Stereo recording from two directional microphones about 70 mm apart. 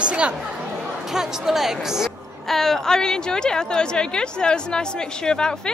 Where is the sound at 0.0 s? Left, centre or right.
Centre.